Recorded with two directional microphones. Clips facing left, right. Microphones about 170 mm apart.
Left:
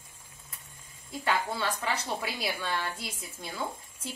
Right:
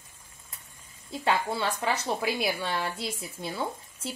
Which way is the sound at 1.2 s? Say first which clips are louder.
Right 3 dB; 25° right (ahead or behind).